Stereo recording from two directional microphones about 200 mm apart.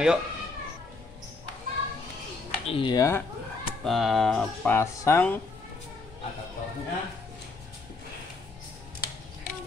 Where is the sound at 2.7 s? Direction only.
20° left (ahead or behind).